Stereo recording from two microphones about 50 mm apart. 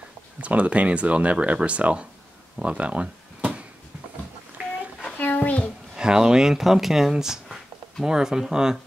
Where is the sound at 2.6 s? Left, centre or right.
Right.